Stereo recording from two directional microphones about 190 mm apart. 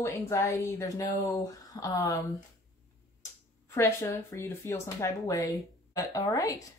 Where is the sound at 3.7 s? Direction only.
15° left (ahead or behind).